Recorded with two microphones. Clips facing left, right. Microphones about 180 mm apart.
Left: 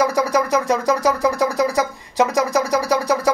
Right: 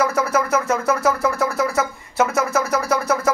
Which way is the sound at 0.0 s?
15° left (ahead or behind).